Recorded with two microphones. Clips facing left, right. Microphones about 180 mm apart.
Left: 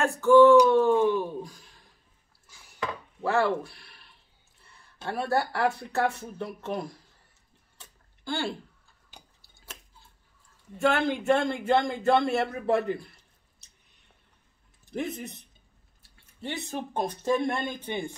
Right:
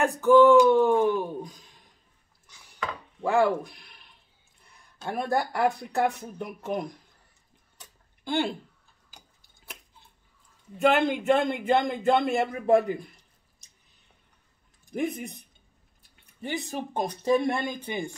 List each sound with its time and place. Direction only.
0.0 s speech: 15° right (ahead or behind)
2.4 s dishes: 5° left (ahead or behind)
3.3 s speech: 15° right (ahead or behind)
8.2 s speech: 20° right (ahead or behind)
10.8 s speech: 15° right (ahead or behind)
14.9 s speech: 10° right (ahead or behind)